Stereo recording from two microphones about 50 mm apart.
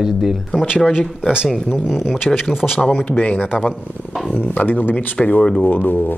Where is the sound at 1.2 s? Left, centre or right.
Centre.